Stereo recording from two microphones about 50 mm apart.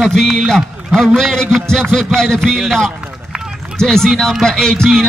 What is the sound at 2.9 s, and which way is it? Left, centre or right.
Run, right.